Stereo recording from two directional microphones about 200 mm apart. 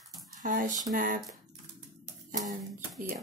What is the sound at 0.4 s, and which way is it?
Speech, 40° right (ahead or behind).